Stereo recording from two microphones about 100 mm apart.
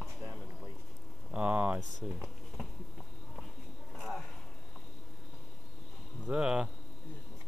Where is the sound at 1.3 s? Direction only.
15° right (ahead or behind).